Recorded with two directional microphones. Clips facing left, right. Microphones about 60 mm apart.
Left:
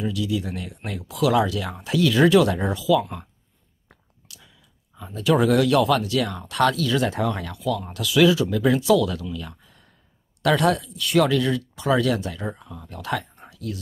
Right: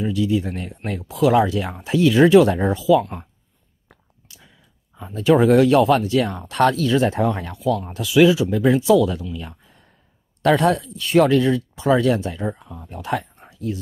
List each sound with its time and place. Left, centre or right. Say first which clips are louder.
0.0 s speech: right 5 dB; right
4.9 s speech: right 4 dB; right
9.3 s a sound: right 1 dB; right
10.4 s speech: right 3 dB; right
12.5 s speech: right 3 dB; centre
13.5 s a sound: right 6 dB; right